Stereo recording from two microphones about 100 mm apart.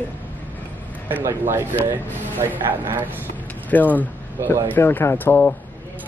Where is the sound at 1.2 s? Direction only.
25° right (ahead or behind).